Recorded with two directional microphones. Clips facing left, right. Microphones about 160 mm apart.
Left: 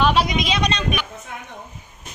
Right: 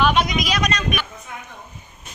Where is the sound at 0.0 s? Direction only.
30° left (ahead or behind).